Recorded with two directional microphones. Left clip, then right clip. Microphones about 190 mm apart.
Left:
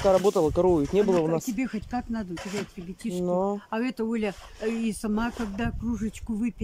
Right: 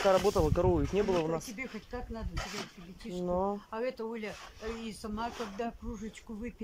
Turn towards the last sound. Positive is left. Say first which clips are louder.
# left 11 dB
turn(degrees=65)  # may be behind; listen again after turning